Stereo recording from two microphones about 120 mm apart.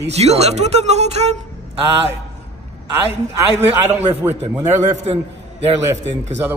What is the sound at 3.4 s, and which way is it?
Speech, 20° right (ahead or behind).